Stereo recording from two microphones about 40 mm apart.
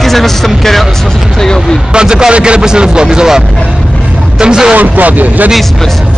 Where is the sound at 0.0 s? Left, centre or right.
Centre.